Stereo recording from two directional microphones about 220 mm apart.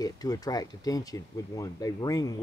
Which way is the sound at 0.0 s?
15° left (ahead or behind).